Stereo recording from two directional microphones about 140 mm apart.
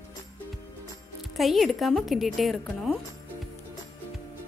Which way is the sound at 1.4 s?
Centre (ahead or behind).